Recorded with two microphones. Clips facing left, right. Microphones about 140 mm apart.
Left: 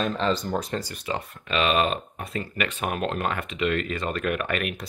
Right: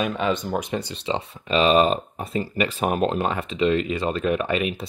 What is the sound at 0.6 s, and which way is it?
Speech, 20° right (ahead or behind).